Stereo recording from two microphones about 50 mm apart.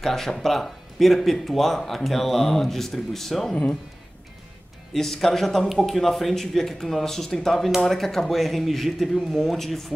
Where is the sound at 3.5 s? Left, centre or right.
Left.